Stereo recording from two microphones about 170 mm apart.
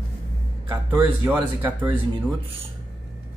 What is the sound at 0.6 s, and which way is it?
Speech, 15° right (ahead or behind).